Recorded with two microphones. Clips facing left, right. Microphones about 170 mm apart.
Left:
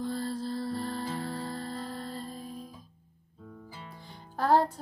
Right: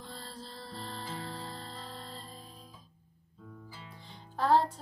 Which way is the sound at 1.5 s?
50° left (ahead or behind).